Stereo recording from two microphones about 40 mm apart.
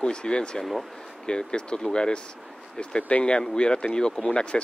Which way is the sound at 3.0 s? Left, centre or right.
Left.